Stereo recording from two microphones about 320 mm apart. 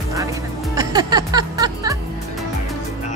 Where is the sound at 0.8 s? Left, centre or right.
Centre.